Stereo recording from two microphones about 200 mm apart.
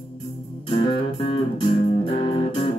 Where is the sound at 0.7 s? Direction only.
25° left (ahead or behind).